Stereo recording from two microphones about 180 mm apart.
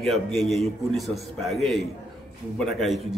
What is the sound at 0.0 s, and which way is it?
A man's voice, centre (ahead or behind).